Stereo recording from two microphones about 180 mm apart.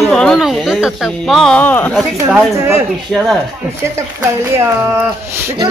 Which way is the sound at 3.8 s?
15° right (ahead or behind).